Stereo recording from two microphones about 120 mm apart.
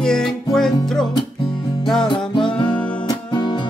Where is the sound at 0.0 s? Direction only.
5° left (ahead or behind).